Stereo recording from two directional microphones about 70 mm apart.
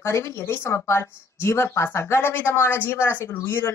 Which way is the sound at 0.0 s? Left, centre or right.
Left.